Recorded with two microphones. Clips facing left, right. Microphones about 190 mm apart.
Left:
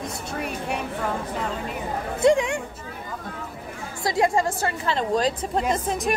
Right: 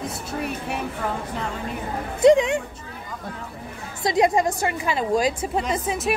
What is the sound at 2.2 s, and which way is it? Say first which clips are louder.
Speech: right 4 dB; 20° right (ahead or behind).